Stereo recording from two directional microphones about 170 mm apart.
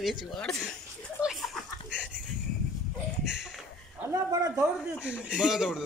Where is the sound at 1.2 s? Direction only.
Centre (ahead or behind).